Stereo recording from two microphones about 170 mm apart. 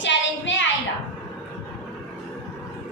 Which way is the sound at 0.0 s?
90° left.